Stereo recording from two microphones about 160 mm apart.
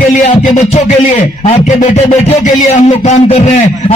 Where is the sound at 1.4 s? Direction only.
45° left (ahead or behind).